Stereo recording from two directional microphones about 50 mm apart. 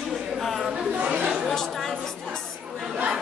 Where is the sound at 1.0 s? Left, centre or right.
Centre.